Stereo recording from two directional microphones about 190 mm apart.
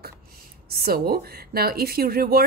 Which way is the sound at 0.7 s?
55° right (ahead or behind).